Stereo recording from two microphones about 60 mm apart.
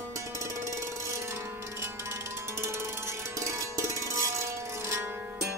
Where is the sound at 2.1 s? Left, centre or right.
Right.